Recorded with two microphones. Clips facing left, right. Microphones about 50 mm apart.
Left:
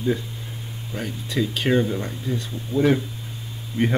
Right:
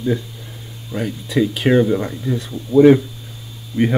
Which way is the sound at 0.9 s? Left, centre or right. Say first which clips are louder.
Right 7 dB; centre.